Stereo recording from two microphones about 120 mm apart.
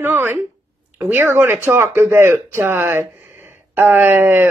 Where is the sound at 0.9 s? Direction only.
15° right (ahead or behind).